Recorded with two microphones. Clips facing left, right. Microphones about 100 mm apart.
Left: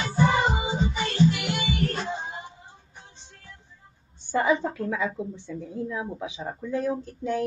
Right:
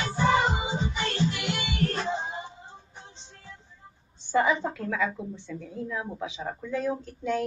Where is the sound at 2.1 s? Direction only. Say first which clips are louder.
Right 2 dB; 20° right (ahead or behind).